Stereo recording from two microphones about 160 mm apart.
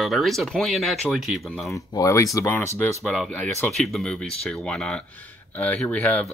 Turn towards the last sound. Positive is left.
turn(degrees=10)  # may be behind; listen again after turning